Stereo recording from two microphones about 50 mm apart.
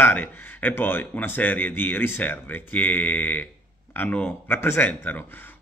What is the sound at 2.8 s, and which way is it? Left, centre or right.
A man's voice, left.